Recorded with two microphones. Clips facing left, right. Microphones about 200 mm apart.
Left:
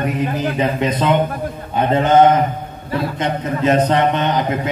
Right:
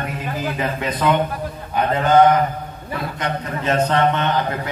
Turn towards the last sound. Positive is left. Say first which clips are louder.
# left 3 dB
turn(degrees=20)  # may be behind; listen again after turning